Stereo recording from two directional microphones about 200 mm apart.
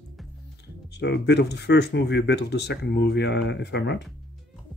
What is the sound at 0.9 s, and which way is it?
Speech, 55° left (ahead or behind).